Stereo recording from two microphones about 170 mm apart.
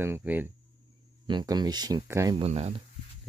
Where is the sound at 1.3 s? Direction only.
25° right (ahead or behind).